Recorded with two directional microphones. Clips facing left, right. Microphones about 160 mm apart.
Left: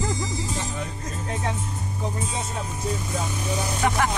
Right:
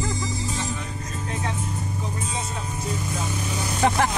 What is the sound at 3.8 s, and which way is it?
Music, 30° right (ahead or behind).